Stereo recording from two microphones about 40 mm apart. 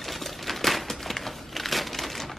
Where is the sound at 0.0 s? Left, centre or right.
Centre.